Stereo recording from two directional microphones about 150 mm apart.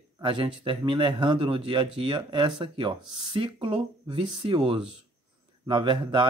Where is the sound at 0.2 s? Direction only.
35° right (ahead or behind).